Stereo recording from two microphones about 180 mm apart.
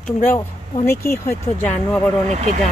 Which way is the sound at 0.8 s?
15° left (ahead or behind).